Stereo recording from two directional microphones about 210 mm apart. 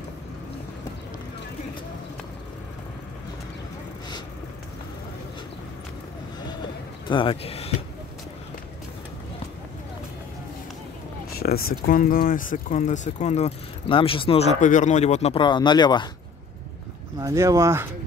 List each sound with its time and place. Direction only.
7.1 s speech: 25° left (ahead or behind)
11.2 s speech: 45° left (ahead or behind); by 16.1 s 20° left (ahead or behind)
17.2 s speech: 15° right (ahead or behind)